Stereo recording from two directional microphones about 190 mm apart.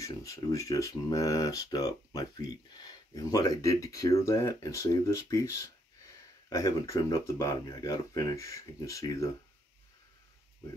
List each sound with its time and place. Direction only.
0.0 s speech: 15° left (ahead or behind)